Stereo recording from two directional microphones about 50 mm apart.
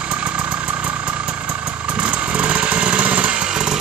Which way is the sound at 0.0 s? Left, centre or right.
Right.